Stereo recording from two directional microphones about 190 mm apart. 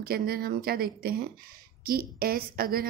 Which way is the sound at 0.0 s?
50° right (ahead or behind).